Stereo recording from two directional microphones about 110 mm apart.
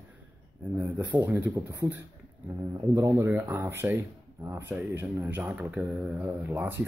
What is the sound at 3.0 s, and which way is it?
Speech, 25° right (ahead or behind).